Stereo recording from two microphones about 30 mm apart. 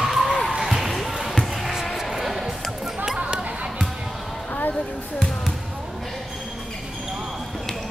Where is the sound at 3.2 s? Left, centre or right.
Right.